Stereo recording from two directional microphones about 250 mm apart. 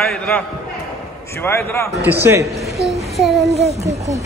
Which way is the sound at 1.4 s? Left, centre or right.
Centre.